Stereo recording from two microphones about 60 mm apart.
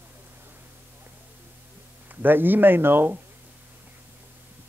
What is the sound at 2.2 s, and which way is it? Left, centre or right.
Speech, right.